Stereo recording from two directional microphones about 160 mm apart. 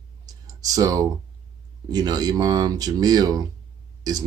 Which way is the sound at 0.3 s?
20° right (ahead or behind).